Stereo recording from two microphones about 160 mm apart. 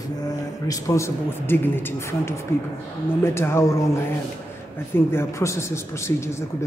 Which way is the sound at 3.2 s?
15° left (ahead or behind).